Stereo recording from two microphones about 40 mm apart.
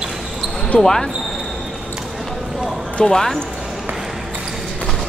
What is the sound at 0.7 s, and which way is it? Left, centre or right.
Speech, centre.